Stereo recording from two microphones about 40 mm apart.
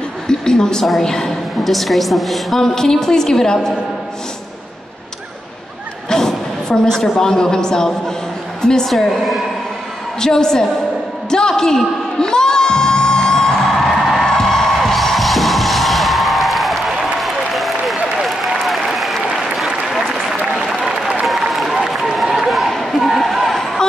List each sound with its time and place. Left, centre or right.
0.3 s a woman's voice: centre
2.6 s a woman's voice: centre
6.0 s a man's voice: centre
10.2 s a woman's voice: centre
11.2 s music: centre
18.6 s applause: centre
21.3 s a sound: centre